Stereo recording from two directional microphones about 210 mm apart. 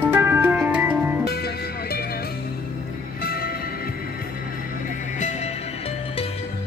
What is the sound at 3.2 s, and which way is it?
Music, 45° left (ahead or behind).